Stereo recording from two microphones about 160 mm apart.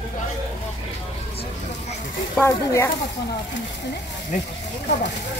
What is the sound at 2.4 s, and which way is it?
Speech, 15° left (ahead or behind).